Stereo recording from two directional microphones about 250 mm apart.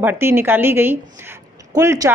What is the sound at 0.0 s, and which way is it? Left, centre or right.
A woman's voice, centre.